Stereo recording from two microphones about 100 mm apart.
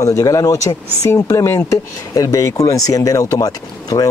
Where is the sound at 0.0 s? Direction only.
35° left (ahead or behind).